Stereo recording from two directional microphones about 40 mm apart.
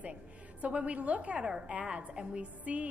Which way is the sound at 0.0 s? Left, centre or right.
Right.